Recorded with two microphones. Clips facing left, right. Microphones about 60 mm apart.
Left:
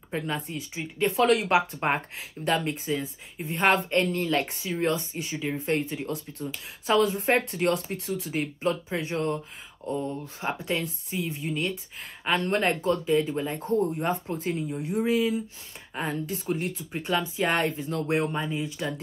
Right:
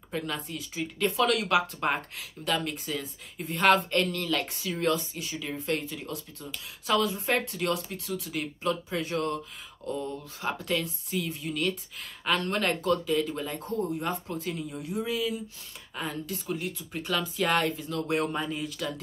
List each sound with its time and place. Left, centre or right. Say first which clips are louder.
0.1 s speech: left 3 dB; left
10.4 s speech: left 1 dB; left